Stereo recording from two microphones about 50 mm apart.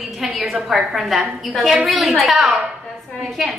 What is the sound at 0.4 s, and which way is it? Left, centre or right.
A woman's voice, centre.